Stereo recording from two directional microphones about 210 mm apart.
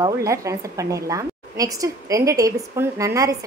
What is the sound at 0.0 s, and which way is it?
A woman's voice, 15° right (ahead or behind).